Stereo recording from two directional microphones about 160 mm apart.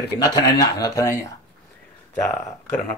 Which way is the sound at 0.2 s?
25° left (ahead or behind).